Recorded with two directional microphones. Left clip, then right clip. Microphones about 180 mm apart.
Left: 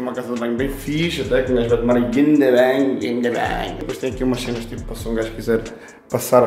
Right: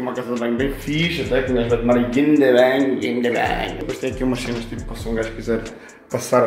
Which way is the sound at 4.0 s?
10° left (ahead or behind).